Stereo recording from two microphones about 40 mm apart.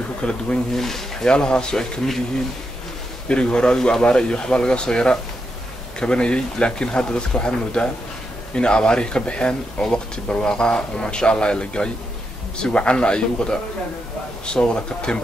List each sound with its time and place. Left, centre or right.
0.2 s speech: left
0.7 s speech: centre
1.2 s speech: left
3.3 s speech: left